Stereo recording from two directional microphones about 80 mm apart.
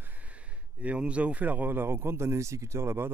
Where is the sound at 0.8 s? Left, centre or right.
Centre.